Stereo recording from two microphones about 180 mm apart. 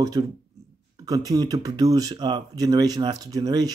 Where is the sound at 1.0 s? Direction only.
20° right (ahead or behind).